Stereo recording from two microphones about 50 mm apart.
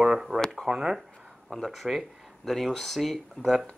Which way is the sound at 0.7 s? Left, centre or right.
Centre.